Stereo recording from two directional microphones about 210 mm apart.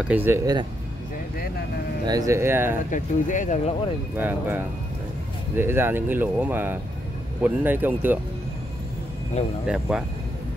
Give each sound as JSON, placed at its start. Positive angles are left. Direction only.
{"t": 0.0, "sound": "speech", "side_deg": -10}
{"t": 2.0, "sound": "speech", "side_deg": -15}
{"t": 2.9, "sound": "speech", "side_deg": 35}
{"t": 4.2, "sound": "speech", "side_deg": -10}
{"t": 5.6, "sound": "speech", "side_deg": -10}
{"t": 9.7, "sound": "speech", "side_deg": -5}